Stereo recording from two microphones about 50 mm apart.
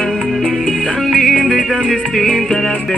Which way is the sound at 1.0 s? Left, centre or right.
Centre.